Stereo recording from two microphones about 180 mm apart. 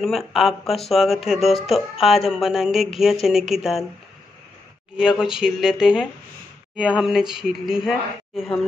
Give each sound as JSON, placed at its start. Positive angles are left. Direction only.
{"t": 0.0, "sound": "speech", "side_deg": 0}
{"t": 4.9, "sound": "speech", "side_deg": -5}